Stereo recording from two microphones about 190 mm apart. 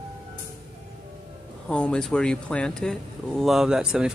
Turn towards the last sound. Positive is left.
turn(degrees=-5)  # may be behind; listen again after turning